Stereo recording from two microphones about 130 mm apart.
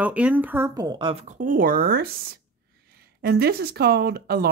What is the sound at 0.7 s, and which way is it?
Speech, 35° right (ahead or behind).